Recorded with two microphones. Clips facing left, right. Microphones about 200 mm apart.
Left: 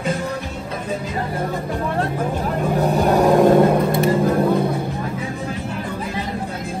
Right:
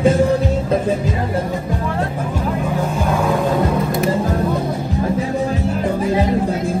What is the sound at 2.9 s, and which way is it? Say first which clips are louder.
Vehicle: left 6 dB; 40° left (ahead or behind).